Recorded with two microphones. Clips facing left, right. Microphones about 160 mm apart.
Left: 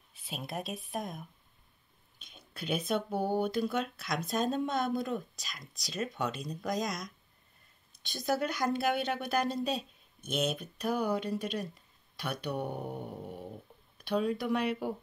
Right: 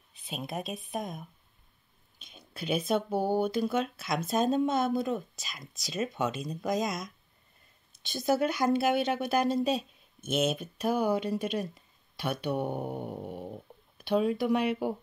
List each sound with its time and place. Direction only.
0.1 s speech: centre (ahead or behind)
8.1 s speech: 5° right (ahead or behind)
12.6 s mantra: 25° right (ahead or behind)
13.0 s speech: 15° right (ahead or behind)